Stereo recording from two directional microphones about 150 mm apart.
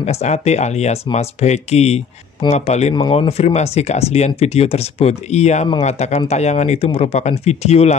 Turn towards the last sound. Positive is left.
turn(degrees=45)  # may be behind; listen again after turning